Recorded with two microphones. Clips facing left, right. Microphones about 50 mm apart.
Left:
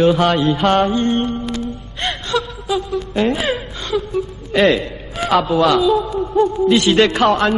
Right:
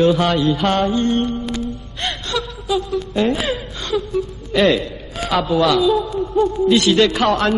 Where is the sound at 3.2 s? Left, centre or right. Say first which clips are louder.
Left 1 dB; centre.